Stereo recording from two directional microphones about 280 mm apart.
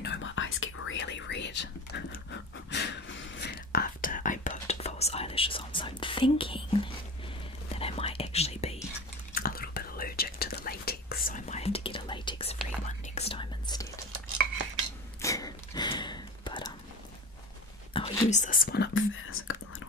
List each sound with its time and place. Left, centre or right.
0.0 s whispering: left
1.9 s dog: left
2.7 s whispering: left; by 13.8 s centre
15.2 s a sound: centre
17.9 s whispering: centre; by 19.5 s left